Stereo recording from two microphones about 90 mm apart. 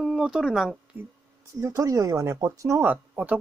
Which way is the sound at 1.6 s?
40° right (ahead or behind).